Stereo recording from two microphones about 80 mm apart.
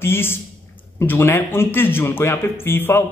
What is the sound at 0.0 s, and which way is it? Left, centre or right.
Speech, left.